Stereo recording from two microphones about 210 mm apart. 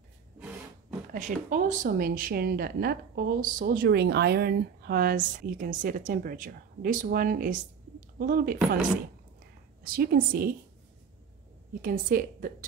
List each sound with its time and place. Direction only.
0.4 s a sound: 5° right (ahead or behind)
1.1 s speech: 35° right (ahead or behind)
9.8 s speech: 45° right (ahead or behind)
11.8 s a woman's voice: 40° right (ahead or behind)